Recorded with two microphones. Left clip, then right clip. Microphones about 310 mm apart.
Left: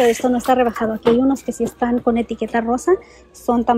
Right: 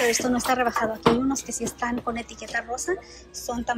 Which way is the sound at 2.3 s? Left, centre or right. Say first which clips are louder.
Left 9 dB; centre.